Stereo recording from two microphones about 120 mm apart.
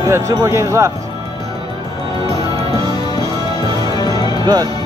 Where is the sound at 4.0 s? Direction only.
35° left (ahead or behind).